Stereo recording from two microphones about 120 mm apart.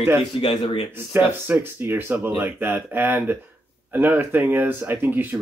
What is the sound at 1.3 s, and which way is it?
Speech, 15° right (ahead or behind).